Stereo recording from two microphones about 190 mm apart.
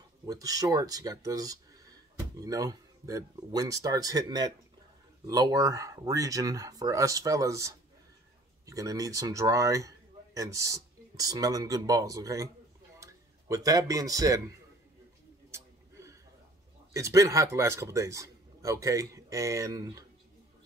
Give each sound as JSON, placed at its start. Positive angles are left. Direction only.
{"t": 0.3, "sound": "a man's voice", "side_deg": -20}
{"t": 15.5, "sound": "a sound", "side_deg": -15}
{"t": 16.9, "sound": "speech", "side_deg": -15}